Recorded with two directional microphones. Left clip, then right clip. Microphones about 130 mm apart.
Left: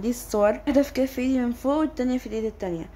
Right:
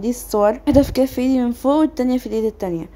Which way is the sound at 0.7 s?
30° right (ahead or behind).